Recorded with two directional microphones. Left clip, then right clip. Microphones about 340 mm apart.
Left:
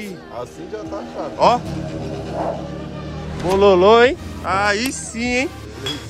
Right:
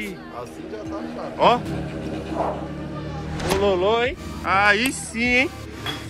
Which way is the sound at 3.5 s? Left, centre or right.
Left.